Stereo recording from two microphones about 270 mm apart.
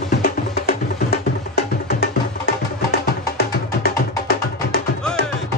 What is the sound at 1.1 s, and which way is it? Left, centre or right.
Music, left.